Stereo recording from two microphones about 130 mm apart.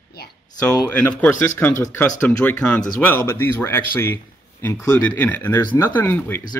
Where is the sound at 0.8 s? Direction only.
15° left (ahead or behind).